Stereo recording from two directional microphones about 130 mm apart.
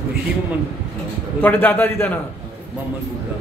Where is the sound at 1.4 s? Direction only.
15° left (ahead or behind).